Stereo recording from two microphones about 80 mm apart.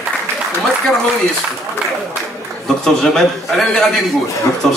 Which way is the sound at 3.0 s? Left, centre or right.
Centre.